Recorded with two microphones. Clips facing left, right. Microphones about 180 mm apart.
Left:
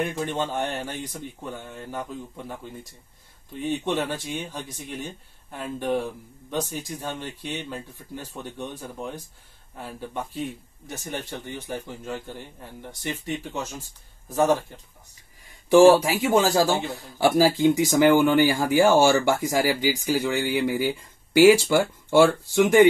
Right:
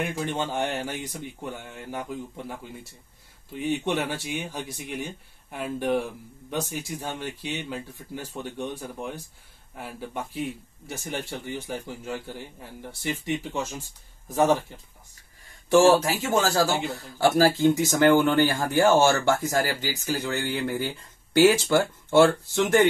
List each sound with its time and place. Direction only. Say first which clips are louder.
0.5 s speech: even; 10° right (ahead or behind)
3.5 s speech: even; 10° right (ahead or behind)
13.0 s speech: right 2 dB; 15° right (ahead or behind)
15.4 s a man's voice: left 4 dB; 15° left (ahead or behind)